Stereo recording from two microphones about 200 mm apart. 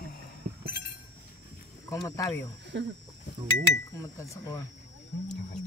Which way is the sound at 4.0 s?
15° left (ahead or behind).